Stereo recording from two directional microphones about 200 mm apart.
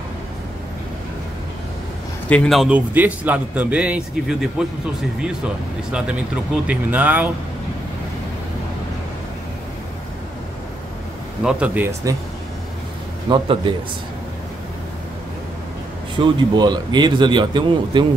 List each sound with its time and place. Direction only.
2.2 s a man's voice: 5° left (ahead or behind)
5.9 s a man's voice: 5° right (ahead or behind)
11.4 s speech: 5° right (ahead or behind)
13.3 s speech: 25° right (ahead or behind)
16.2 s speech: 20° right (ahead or behind)